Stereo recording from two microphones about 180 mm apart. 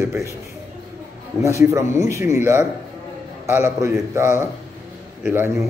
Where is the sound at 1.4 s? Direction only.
15° right (ahead or behind).